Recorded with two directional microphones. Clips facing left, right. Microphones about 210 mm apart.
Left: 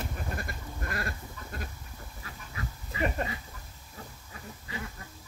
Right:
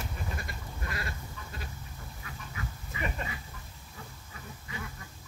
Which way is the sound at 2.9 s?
40° left (ahead or behind).